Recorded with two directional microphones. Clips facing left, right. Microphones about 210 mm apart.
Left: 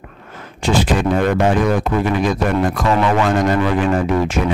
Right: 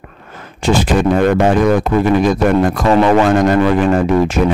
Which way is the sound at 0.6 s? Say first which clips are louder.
Right 3 dB; 45° right (ahead or behind).